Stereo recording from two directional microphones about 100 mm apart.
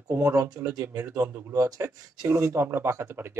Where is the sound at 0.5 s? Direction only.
35° right (ahead or behind).